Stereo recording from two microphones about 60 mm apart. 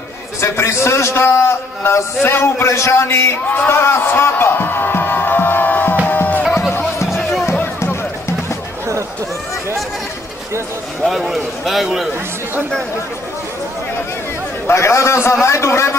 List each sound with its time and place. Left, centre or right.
0.4 s a man's voice: left
3.7 s music: left
7.1 s music: centre
7.6 s music: left
11.1 s a man's voice: centre
14.7 s a man's voice: left